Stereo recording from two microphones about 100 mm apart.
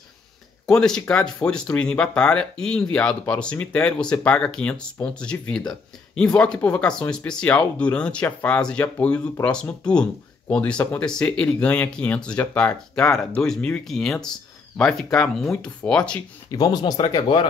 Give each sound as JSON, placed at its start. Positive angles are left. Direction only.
{"t": 0.7, "sound": "speech", "side_deg": 5}
{"t": 16.5, "sound": "speech", "side_deg": 40}